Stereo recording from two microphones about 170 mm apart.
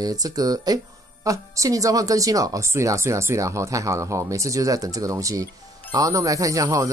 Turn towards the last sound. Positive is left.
turn(degrees=-20)  # may be behind; listen again after turning